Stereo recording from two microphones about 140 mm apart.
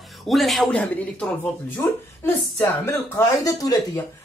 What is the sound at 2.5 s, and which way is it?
Speech, 20° left (ahead or behind).